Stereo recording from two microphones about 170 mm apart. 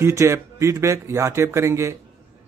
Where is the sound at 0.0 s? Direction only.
15° right (ahead or behind).